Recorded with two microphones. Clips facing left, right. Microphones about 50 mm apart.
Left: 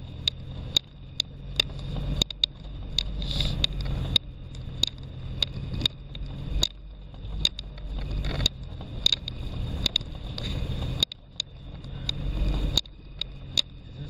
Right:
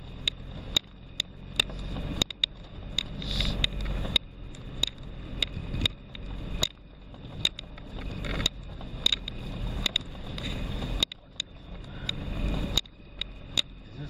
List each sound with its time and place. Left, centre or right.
0.2 s vehicle: right
3.2 s vehicle: centre
3.6 s vehicle: right
8.6 s vehicle: centre
9.0 s vehicle: right